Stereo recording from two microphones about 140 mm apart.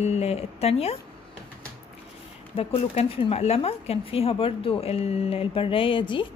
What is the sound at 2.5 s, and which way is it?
Speech, 45° left (ahead or behind).